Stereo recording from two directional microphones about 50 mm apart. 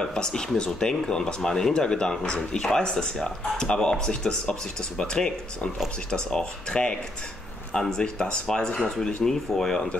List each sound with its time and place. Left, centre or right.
0.0 s speech: centre